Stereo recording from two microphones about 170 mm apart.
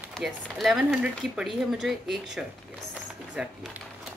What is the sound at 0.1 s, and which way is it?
Speech, centre (ahead or behind).